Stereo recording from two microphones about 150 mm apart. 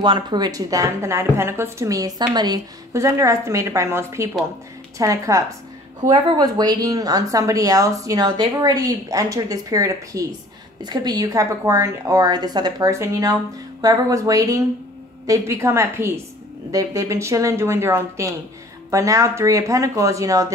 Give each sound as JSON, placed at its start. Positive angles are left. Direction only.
{"t": 0.0, "sound": "a woman's voice", "side_deg": -30}